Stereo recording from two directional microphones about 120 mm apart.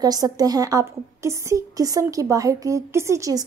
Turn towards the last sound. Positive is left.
turn(degrees=-30)  # may be behind; listen again after turning